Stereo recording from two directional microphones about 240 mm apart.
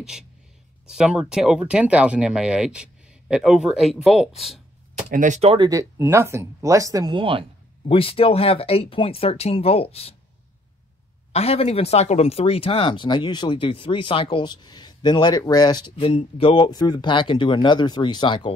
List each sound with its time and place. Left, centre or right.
0.8 s speech: centre
4.9 s speech: right
7.9 s speech: left
11.3 s speech: left